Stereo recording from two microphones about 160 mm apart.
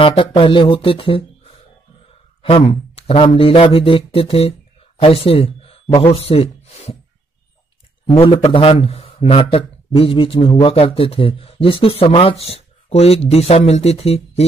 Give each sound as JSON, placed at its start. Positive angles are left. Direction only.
{"t": 0.0, "sound": "a man's voice", "side_deg": 35}
{"t": 8.2, "sound": "a man's voice", "side_deg": 35}